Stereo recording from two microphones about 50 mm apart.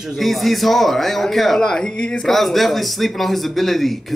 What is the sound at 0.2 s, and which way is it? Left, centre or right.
Speech, centre.